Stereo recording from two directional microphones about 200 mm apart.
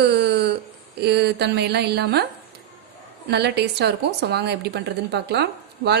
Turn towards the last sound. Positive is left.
turn(degrees=-55)  # may be behind; listen again after turning